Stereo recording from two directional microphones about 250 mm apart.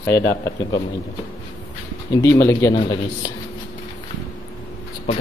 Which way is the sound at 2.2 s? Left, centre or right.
Centre.